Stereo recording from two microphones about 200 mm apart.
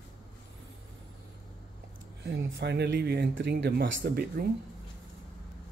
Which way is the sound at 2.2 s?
55° right (ahead or behind).